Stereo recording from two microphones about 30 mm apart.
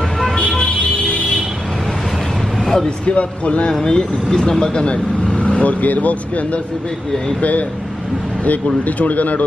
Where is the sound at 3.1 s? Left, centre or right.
Left.